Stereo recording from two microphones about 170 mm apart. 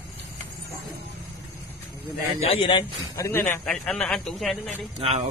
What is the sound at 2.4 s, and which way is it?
A man's voice, 35° left (ahead or behind).